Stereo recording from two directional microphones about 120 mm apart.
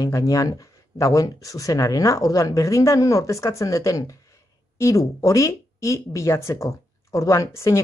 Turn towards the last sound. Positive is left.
turn(degrees=25)  # may be behind; listen again after turning